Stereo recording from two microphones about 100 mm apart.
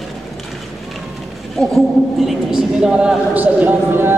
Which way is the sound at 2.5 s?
5° right (ahead or behind).